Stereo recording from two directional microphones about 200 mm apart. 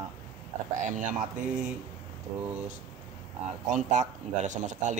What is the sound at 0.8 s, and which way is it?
Speech, 40° right (ahead or behind).